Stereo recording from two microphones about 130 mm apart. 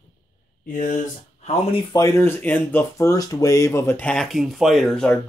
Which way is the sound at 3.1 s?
30° left (ahead or behind).